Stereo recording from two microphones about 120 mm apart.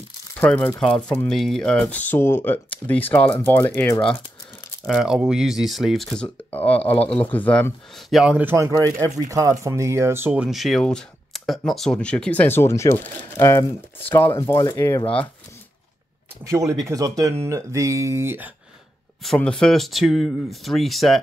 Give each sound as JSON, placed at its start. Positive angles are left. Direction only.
{"t": 0.4, "sound": "speech", "side_deg": 15}
{"t": 4.0, "sound": "speech", "side_deg": 50}
{"t": 4.8, "sound": "speech", "side_deg": -5}
{"t": 7.9, "sound": "speech", "side_deg": -5}
{"t": 8.5, "sound": "speech", "side_deg": -25}
{"t": 10.3, "sound": "speech", "side_deg": -5}
{"t": 16.4, "sound": "speech", "side_deg": -25}
{"t": 19.2, "sound": "speech", "side_deg": 10}